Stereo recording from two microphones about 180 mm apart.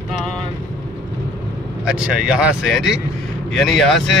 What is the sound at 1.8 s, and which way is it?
Speech, 5° right (ahead or behind).